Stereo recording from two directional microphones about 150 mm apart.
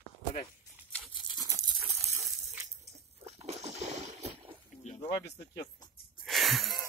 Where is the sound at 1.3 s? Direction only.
25° right (ahead or behind).